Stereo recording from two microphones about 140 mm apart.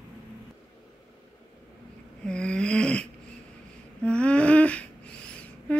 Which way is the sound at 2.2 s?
5° left (ahead or behind).